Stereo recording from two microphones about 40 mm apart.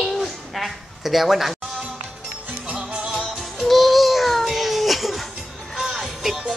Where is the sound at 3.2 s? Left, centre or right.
Centre.